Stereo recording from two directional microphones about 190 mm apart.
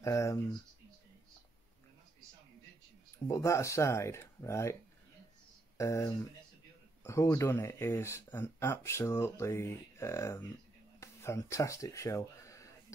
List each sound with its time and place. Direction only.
0.0 s speech: 15° left (ahead or behind)
3.3 s speech: 15° left (ahead or behind)
5.8 s speech: 15° left (ahead or behind)